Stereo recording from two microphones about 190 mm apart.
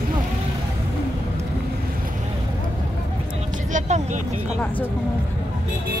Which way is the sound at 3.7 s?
40° right (ahead or behind).